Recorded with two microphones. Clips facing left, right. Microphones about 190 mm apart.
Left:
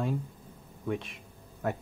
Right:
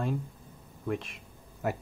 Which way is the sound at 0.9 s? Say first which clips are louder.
Even; centre (ahead or behind).